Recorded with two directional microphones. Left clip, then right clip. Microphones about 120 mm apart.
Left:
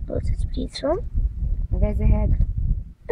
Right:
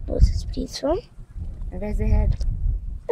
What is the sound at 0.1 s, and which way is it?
Speech, centre (ahead or behind).